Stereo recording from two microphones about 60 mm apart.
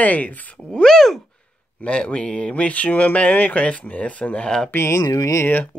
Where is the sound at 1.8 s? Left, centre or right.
Centre.